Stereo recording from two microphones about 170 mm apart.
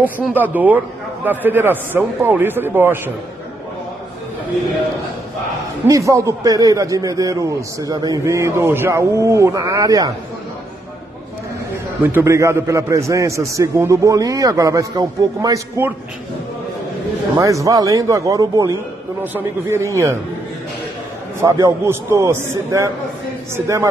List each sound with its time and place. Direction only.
0.0 s a man's voice: 10° right (ahead or behind)
5.9 s a man's voice: 20° right (ahead or behind)
12.0 s a man's voice: 10° right (ahead or behind)
17.4 s a man's voice: 20° right (ahead or behind)
21.4 s a man's voice: 20° right (ahead or behind)